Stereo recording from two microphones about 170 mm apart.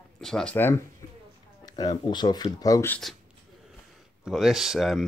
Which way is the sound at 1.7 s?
25° left (ahead or behind).